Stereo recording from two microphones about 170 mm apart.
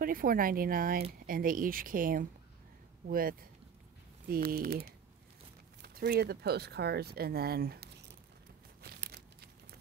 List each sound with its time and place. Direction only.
0.0 s speech: 55° right (ahead or behind)
8.8 s crumpling: 70° right (ahead or behind)